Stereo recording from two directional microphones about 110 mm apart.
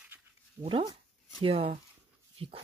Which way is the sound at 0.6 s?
50° right (ahead or behind).